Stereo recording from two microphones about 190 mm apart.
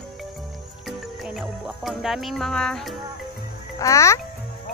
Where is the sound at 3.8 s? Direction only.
15° left (ahead or behind).